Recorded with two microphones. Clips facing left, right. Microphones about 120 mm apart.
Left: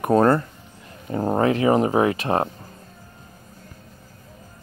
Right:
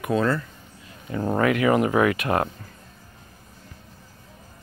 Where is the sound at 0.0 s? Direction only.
45° left (ahead or behind).